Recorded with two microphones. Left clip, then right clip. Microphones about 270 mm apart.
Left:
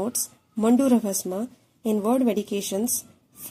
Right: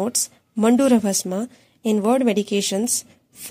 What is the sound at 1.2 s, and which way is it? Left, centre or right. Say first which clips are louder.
A woman's voice: right 4 dB; right.